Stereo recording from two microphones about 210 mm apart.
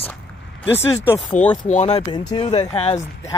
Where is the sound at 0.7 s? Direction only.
10° left (ahead or behind).